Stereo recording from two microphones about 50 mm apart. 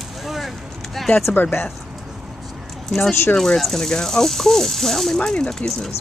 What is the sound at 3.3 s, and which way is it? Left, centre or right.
Speech, centre.